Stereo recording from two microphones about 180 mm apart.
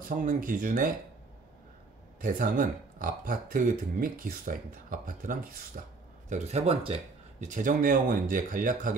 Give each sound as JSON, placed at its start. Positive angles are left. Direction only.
{"t": 0.1, "sound": "speech", "side_deg": -45}
{"t": 2.2, "sound": "speech", "side_deg": -50}